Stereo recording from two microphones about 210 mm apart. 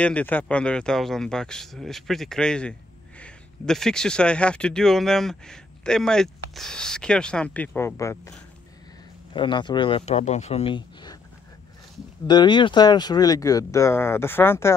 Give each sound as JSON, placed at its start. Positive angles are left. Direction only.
{"t": 0.0, "sound": "speech", "side_deg": 5}
{"t": 9.3, "sound": "speech", "side_deg": 25}
{"t": 12.3, "sound": "speech", "side_deg": 20}